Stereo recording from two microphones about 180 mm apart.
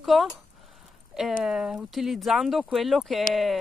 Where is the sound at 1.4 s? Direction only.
5° right (ahead or behind).